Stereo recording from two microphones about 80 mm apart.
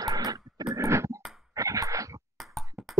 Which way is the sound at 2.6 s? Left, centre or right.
Right.